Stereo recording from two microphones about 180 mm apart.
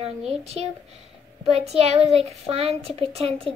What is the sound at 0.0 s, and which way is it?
Speech, 35° right (ahead or behind).